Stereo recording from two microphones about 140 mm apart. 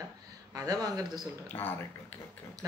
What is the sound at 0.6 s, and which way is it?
Speech, 25° right (ahead or behind).